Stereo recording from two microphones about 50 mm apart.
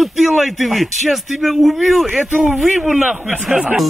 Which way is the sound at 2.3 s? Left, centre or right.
Right.